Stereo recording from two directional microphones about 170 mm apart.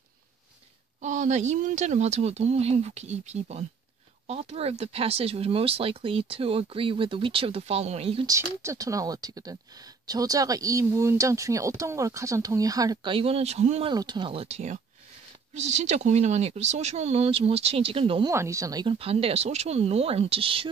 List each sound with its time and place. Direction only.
1.0 s speech: 45° right (ahead or behind)
8.3 s speech: 20° right (ahead or behind); by 13.9 s 40° right (ahead or behind)
13.9 s speech: 25° right (ahead or behind)
18.3 s speech: 15° right (ahead or behind)
18.9 s speech: 35° right (ahead or behind)